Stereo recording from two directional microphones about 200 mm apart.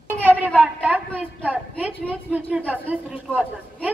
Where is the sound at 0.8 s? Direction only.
5° right (ahead or behind).